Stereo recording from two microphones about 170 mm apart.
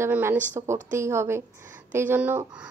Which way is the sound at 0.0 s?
15° right (ahead or behind).